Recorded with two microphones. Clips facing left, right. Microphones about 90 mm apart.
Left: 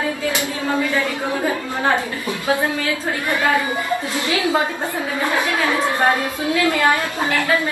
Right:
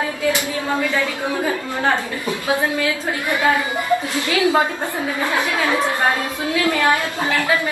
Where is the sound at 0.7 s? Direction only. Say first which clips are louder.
Left 1 dB; 15° left (ahead or behind).